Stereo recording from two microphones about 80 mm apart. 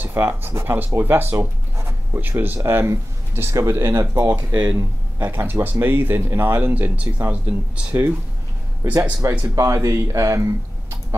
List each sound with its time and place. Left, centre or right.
0.0 s speech: right
5.2 s speech: right
9.6 s speech: right